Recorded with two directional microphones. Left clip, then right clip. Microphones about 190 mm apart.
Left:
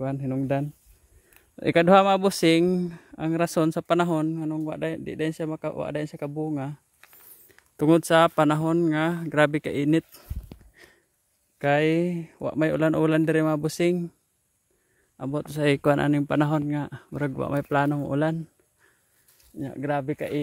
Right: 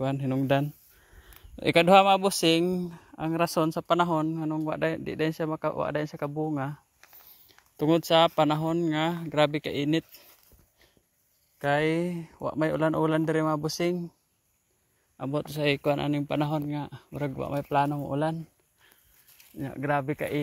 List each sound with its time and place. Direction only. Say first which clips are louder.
0.0 s speech: even; 15° left (ahead or behind)
1.6 s speech: left 1 dB; 25° left (ahead or behind)
11.5 s speech: left 4 dB; 40° left (ahead or behind)
15.1 s speech: left 1 dB; 25° left (ahead or behind)
19.6 s speech: even; 25° left (ahead or behind)